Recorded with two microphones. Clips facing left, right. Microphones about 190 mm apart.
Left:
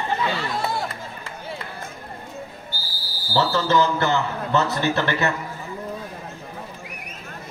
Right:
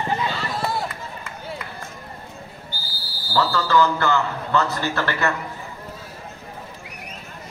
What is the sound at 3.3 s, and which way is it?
A man's voice, 20° left (ahead or behind).